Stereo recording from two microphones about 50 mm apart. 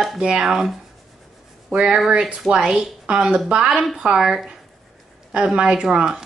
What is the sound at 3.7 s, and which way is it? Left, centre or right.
Speech, centre.